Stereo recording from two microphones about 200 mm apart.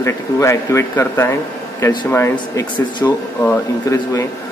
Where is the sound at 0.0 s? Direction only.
15° left (ahead or behind).